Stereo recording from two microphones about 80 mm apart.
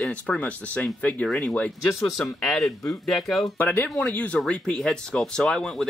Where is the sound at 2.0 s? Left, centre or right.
Centre.